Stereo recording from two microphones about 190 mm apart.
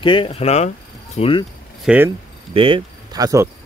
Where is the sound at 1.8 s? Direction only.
10° right (ahead or behind).